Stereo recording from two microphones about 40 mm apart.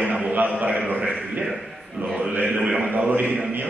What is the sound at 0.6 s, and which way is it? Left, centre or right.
Speech, right.